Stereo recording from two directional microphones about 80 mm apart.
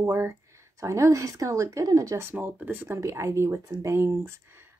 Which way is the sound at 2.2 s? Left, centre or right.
Right.